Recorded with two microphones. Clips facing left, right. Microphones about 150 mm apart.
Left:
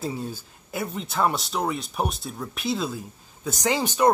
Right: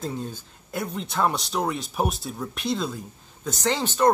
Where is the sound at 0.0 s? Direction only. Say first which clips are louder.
Left 1 dB; 5° left (ahead or behind).